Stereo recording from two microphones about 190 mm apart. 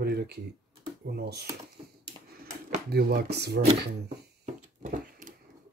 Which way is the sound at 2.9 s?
55° right (ahead or behind).